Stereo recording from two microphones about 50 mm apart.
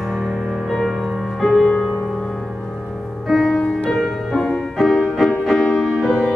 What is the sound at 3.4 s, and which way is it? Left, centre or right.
Music, centre.